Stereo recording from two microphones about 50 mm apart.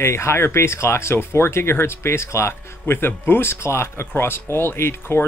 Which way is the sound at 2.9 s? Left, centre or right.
Left.